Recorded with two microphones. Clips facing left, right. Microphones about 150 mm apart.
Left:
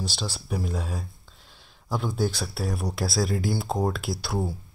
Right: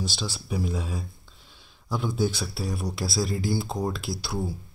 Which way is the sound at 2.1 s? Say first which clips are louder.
Even; centre (ahead or behind).